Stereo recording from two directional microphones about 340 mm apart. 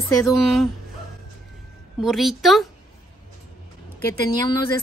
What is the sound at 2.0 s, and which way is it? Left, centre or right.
Speech, centre.